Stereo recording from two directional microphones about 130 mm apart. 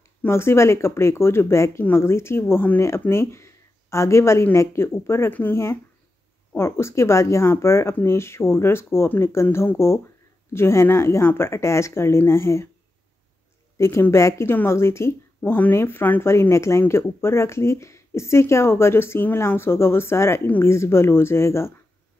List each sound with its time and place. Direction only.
0.2 s a woman's voice: 20° left (ahead or behind)
13.7 s a woman's voice: 20° left (ahead or behind)